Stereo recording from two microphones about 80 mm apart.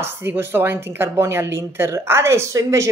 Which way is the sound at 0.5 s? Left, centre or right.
Right.